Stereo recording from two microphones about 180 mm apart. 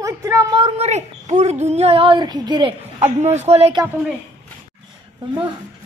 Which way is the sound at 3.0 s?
40° right (ahead or behind).